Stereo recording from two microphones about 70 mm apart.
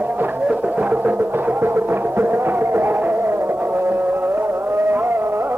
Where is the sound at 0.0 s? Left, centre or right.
Right.